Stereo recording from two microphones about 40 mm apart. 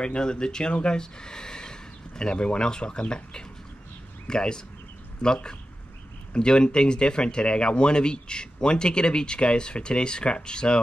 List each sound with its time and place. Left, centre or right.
0.0 s speech: left